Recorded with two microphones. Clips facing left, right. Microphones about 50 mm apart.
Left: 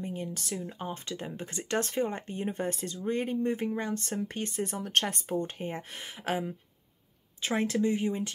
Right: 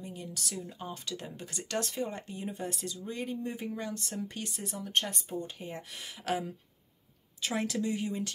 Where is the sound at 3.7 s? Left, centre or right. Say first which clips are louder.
Left 5 dB; left.